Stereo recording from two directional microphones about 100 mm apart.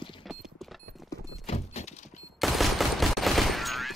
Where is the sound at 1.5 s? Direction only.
90° left.